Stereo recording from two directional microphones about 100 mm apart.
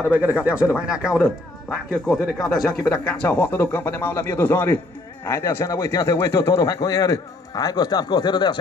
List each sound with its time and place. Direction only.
0.1 s speech: 15° right (ahead or behind); by 8.5 s 50° left (ahead or behind)